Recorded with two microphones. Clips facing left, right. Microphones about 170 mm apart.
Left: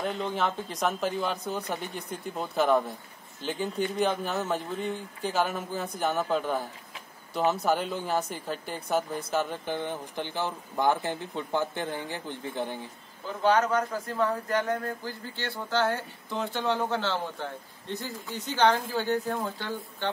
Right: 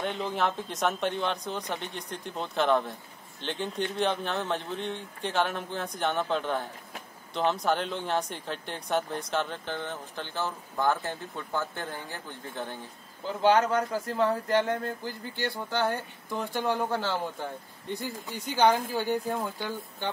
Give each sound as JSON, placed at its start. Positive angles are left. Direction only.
{"t": 0.0, "sound": "speech", "side_deg": 0}
{"t": 13.4, "sound": "speech", "side_deg": -30}
{"t": 15.0, "sound": "a man's voice", "side_deg": -20}